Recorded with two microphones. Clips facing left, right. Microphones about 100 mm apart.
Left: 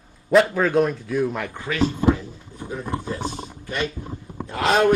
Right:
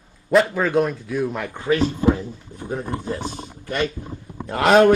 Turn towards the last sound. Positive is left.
turn(degrees=-60)  # may be behind; listen again after turning